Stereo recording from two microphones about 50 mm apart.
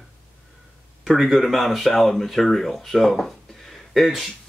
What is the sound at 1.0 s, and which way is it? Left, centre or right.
Speech, centre.